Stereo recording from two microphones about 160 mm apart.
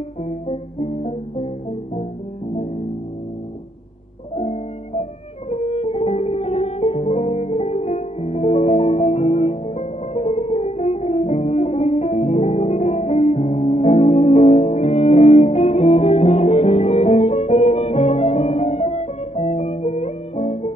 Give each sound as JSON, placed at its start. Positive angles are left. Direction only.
{"t": 0.2, "sound": "music", "side_deg": 40}
{"t": 4.4, "sound": "music", "side_deg": 40}